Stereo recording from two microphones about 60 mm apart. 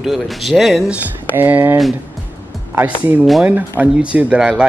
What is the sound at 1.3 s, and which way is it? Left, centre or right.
Speech, right.